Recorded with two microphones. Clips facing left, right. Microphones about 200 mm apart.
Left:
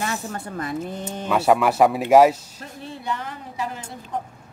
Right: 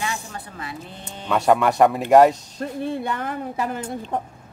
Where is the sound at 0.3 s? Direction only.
45° left (ahead or behind).